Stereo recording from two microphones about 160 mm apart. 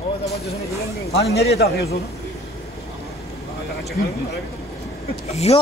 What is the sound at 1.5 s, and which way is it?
Speech, 80° left.